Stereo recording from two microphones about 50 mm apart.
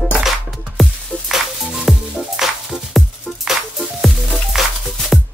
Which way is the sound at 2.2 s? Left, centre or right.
Centre.